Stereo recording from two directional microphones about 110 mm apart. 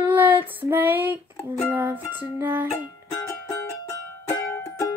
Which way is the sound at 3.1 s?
30° left (ahead or behind).